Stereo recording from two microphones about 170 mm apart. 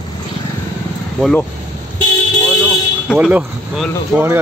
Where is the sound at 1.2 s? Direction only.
5° left (ahead or behind).